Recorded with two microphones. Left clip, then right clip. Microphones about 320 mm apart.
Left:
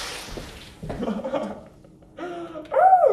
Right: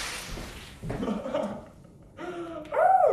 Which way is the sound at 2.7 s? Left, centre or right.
Left.